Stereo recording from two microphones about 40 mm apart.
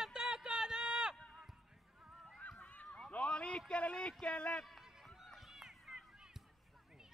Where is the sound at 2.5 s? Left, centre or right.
Left.